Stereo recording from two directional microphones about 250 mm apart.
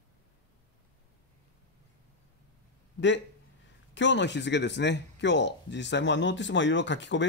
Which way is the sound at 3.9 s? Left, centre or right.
Left.